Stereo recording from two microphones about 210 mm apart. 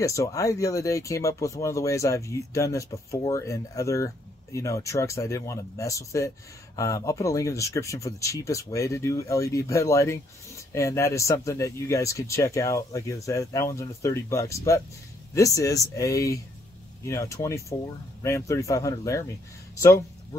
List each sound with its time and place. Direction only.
0.0 s speech: 15° left (ahead or behind)